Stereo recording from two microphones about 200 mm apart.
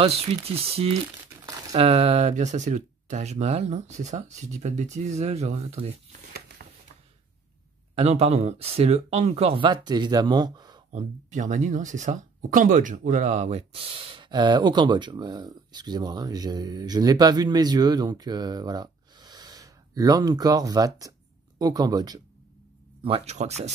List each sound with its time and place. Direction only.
0.0 s speech: 30° right (ahead or behind)
6.6 s a sound: 45° right (ahead or behind)
7.9 s speech: 30° right (ahead or behind)
10.9 s speech: 35° right (ahead or behind); by 22.2 s 20° right (ahead or behind)
23.0 s speech: 30° right (ahead or behind)